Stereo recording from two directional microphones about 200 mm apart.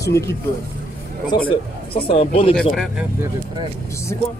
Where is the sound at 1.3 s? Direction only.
20° left (ahead or behind).